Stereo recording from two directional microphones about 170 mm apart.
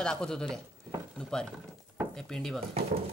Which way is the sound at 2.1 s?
5° left (ahead or behind).